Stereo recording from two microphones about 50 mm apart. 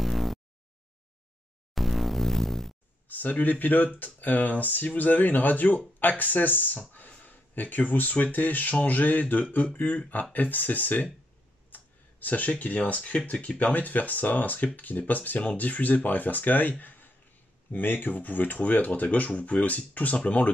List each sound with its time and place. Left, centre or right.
0.0 s a sound: centre
1.8 s music: centre
3.1 s speech: left